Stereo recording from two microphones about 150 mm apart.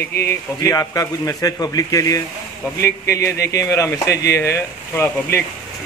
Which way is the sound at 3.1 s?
90° left.